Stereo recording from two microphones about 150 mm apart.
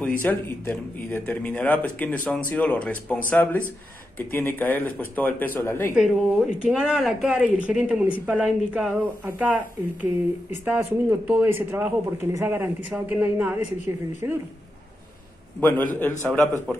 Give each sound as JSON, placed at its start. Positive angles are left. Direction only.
{"t": 0.0, "sound": "speech", "side_deg": 10}
{"t": 5.9, "sound": "speech", "side_deg": -5}
{"t": 15.8, "sound": "speech", "side_deg": 10}
{"t": 16.1, "sound": "speech", "side_deg": -20}